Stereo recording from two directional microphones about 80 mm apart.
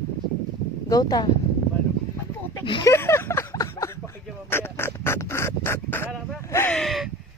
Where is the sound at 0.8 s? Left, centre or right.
Left.